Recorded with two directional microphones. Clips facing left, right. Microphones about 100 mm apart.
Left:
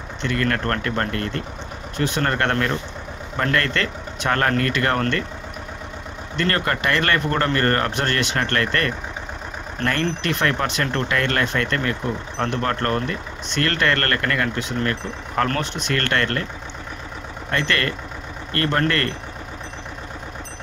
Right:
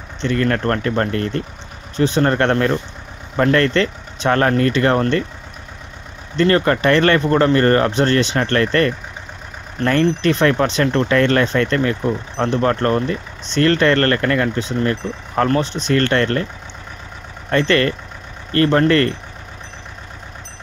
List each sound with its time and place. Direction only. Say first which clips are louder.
0.2 s speech: right 5 dB; 30° right (ahead or behind)
6.3 s speech: right 8 dB; 25° right (ahead or behind)
17.5 s speech: right 7 dB; 30° right (ahead or behind)